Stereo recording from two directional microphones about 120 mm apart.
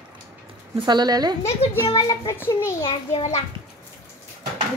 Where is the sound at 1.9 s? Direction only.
35° left (ahead or behind).